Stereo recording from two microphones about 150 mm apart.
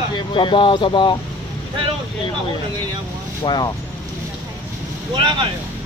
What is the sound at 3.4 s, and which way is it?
Speech, 30° left (ahead or behind).